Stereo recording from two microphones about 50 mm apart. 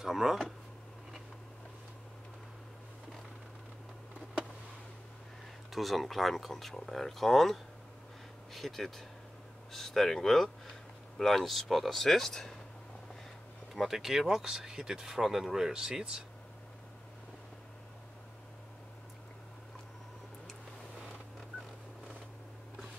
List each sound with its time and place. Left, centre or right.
0.0 s speech: centre
5.7 s speech: centre
13.7 s speech: centre